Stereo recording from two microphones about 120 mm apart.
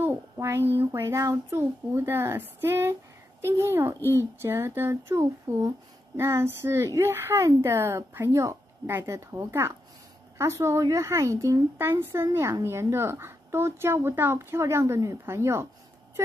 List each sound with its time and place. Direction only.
0.0 s speech: 20° right (ahead or behind)